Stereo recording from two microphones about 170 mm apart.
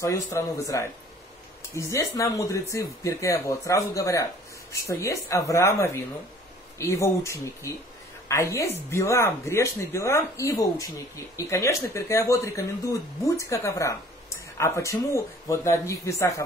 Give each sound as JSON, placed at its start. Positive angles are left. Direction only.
{"t": 0.0, "sound": "speech", "side_deg": 15}